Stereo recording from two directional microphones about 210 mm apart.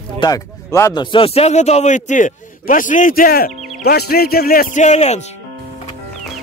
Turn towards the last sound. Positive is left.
turn(degrees=30)  # may be behind; listen again after turning